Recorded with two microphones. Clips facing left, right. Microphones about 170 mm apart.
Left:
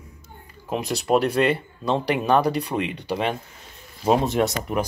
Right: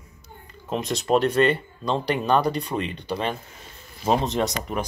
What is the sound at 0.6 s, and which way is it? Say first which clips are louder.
Speech: left 1 dB; 10° left (ahead or behind).